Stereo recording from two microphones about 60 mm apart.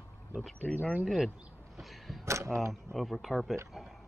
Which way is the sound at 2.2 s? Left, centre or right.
Right.